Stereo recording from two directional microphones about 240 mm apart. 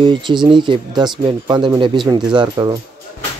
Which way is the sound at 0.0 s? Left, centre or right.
Centre.